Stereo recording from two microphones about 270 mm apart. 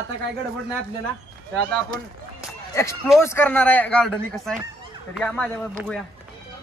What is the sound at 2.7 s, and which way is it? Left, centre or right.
Speech, centre.